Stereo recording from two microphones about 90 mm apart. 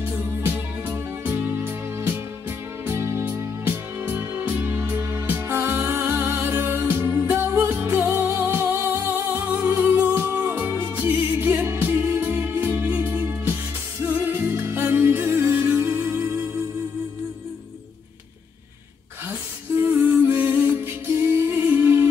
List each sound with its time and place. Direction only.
0.5 s music: 25° right (ahead or behind)
19.2 s a sound: 30° right (ahead or behind)
19.9 s music: 20° right (ahead or behind)